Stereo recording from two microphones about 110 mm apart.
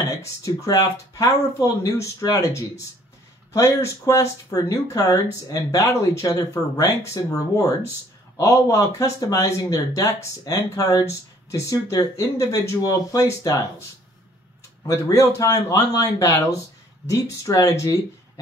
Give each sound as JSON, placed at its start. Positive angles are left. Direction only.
{"t": 0.2, "sound": "speech", "side_deg": 30}
{"t": 14.9, "sound": "speech", "side_deg": 30}